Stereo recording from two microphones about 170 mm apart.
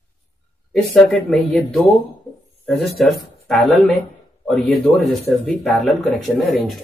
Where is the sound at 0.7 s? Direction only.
Centre (ahead or behind).